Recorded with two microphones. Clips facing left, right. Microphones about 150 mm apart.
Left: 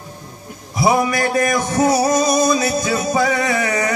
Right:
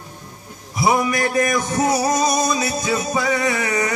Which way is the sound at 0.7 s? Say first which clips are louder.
Left 2 dB; 35° left (ahead or behind).